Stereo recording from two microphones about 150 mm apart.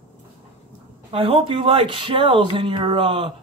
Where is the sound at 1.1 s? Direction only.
40° right (ahead or behind).